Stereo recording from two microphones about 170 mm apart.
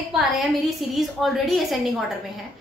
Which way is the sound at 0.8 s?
Centre (ahead or behind).